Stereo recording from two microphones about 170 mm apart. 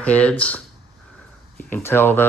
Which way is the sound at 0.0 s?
5° left (ahead or behind).